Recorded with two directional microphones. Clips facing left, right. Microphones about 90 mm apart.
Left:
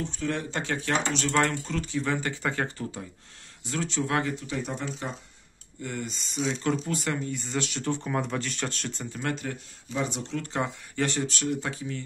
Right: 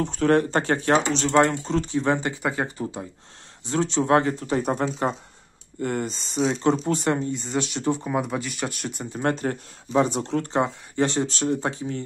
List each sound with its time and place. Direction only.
0.0 s speech: 55° right (ahead or behind)
0.9 s speech: 25° right (ahead or behind); by 6.1 s 50° right (ahead or behind)
6.5 s speech: 30° right (ahead or behind); by 9.0 s 15° right (ahead or behind)
9.1 s speech: 35° right (ahead or behind)
10.5 s speech: 25° right (ahead or behind)